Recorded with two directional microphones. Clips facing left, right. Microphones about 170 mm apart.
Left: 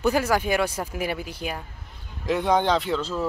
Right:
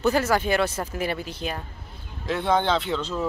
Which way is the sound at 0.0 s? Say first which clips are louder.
Even; 10° left (ahead or behind).